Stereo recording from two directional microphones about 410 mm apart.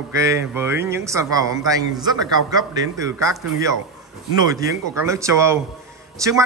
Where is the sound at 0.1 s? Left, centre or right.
Centre.